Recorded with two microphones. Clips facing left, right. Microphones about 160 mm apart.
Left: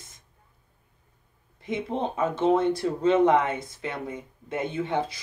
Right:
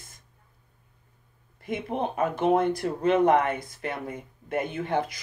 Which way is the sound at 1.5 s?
25° left (ahead or behind).